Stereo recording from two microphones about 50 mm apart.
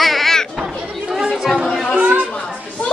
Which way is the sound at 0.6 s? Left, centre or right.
Centre.